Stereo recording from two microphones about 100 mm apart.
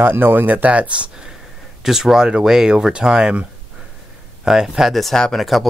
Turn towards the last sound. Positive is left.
turn(degrees=0)  # may be behind; listen again after turning